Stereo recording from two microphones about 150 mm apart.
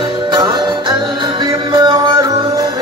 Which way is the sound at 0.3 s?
25° right (ahead or behind).